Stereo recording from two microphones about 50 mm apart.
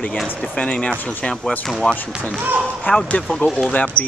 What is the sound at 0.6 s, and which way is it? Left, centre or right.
Speech, left.